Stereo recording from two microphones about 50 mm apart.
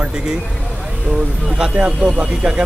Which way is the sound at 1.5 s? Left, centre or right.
Centre.